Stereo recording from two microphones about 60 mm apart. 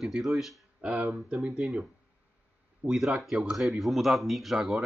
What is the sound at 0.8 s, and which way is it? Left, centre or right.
Speech, centre.